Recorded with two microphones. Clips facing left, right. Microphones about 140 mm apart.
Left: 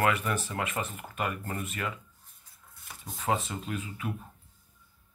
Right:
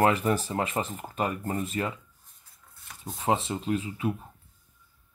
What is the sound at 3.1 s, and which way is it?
Speech, 30° right (ahead or behind).